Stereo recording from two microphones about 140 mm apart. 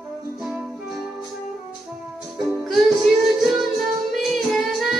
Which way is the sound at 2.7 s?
Centre (ahead or behind).